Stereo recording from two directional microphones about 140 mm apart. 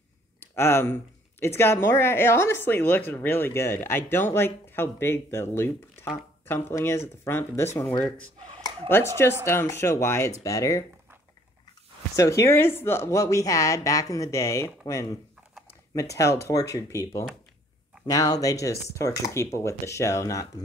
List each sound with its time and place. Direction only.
0.4 s speech: 20° left (ahead or behind)
8.8 s speech: 15° left (ahead or behind)
12.2 s speech: 20° left (ahead or behind)